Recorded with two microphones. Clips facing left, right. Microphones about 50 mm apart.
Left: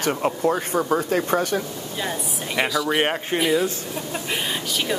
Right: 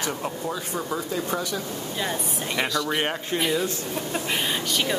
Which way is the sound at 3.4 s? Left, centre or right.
Centre.